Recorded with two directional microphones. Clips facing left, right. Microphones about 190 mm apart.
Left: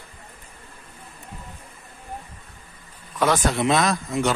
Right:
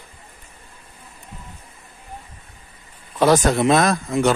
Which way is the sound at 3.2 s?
40° right (ahead or behind).